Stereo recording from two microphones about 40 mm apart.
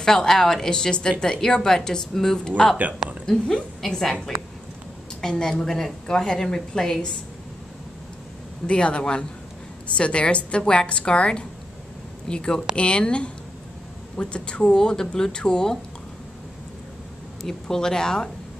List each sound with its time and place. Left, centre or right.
0.0 s a woman's voice: centre
5.2 s a woman's voice: centre
8.6 s speech: left
17.4 s a woman's voice: centre